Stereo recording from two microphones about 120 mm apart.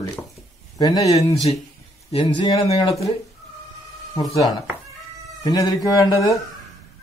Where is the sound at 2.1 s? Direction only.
55° left (ahead or behind).